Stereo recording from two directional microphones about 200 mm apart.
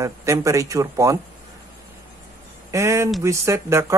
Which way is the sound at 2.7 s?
15° right (ahead or behind).